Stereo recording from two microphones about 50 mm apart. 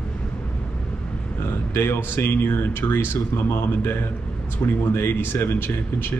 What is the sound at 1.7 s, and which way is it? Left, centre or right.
Speech, left.